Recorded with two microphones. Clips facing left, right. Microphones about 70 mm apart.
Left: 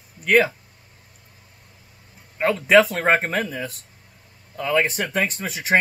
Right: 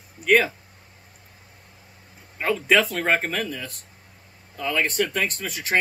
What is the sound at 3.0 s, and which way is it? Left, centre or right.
Speech, left.